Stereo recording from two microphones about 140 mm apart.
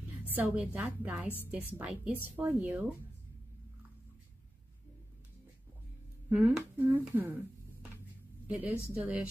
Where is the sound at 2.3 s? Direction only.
15° right (ahead or behind).